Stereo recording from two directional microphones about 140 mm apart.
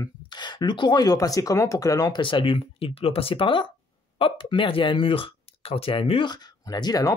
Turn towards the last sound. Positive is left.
turn(degrees=30)  # may be behind; listen again after turning